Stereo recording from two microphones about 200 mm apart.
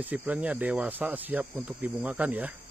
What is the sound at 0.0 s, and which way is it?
Speech, 10° right (ahead or behind).